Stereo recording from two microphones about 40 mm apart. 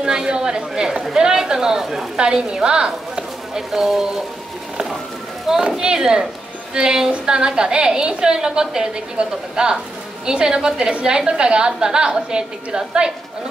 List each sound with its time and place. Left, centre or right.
0.0 s a woman's voice: centre
5.8 s a woman's voice: centre